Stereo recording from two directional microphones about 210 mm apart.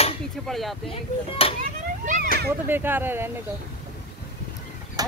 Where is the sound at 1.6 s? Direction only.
40° right (ahead or behind).